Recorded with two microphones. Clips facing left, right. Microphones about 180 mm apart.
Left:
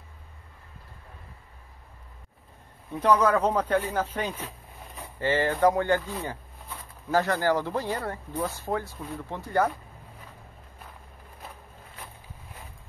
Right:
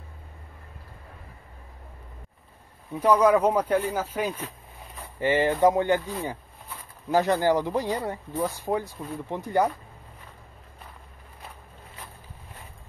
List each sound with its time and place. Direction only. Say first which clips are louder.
3.0 s speech: right 3 dB; 10° right (ahead or behind)